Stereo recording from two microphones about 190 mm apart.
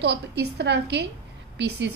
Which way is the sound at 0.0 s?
60° right (ahead or behind).